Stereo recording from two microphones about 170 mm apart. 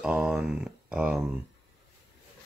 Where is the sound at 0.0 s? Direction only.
5° right (ahead or behind).